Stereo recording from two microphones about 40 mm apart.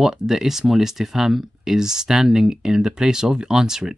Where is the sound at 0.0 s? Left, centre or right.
Centre.